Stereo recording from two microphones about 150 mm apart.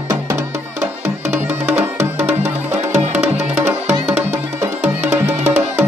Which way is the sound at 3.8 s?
45° right (ahead or behind).